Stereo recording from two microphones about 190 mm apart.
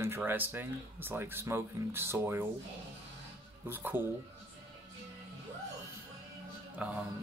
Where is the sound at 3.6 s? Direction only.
10° right (ahead or behind).